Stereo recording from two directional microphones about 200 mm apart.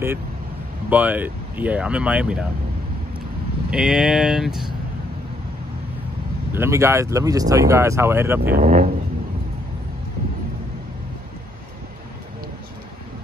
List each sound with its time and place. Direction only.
0.8 s speech: 10° right (ahead or behind)
3.7 s speech: 5° right (ahead or behind)
6.5 s speech: 15° right (ahead or behind)
8.4 s speech: 45° right (ahead or behind)